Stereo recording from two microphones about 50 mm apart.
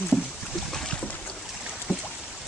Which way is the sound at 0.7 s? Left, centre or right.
Centre.